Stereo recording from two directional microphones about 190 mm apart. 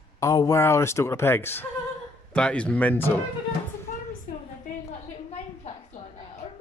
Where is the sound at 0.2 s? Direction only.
15° left (ahead or behind).